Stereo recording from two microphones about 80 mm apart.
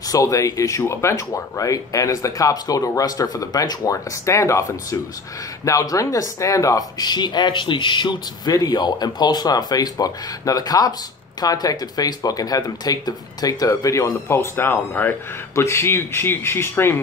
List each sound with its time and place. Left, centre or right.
0.1 s speech: left
7.1 s speech: left
8.5 s speech: left